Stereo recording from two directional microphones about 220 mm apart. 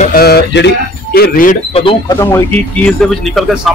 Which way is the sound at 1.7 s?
25° left (ahead or behind).